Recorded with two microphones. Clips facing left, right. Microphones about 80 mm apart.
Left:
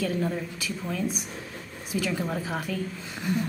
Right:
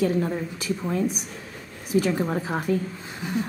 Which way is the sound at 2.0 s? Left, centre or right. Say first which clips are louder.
Right 6 dB; right.